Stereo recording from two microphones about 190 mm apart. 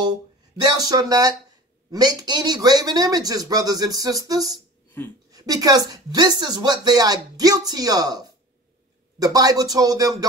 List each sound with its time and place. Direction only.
0.0 s a woman's voice: 20° right (ahead or behind)